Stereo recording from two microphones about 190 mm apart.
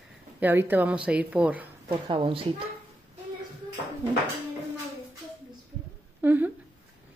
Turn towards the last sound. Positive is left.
turn(degrees=-10)  # may be behind; listen again after turning